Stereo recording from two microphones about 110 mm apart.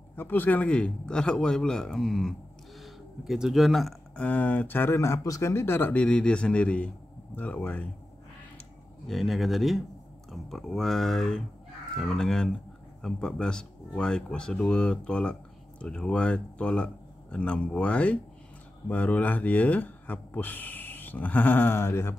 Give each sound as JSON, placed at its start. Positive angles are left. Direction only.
{"t": 0.1, "sound": "speech", "side_deg": 20}
{"t": 4.2, "sound": "speech", "side_deg": 15}
{"t": 9.0, "sound": "speech", "side_deg": 0}